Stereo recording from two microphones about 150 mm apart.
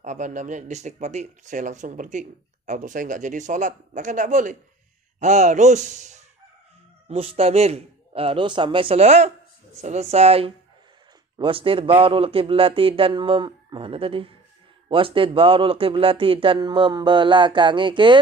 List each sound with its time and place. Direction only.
0.0 s speech: 55° right (ahead or behind)
7.1 s speech: 40° right (ahead or behind)